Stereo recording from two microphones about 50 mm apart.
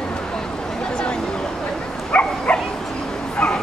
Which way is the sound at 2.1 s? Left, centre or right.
Left.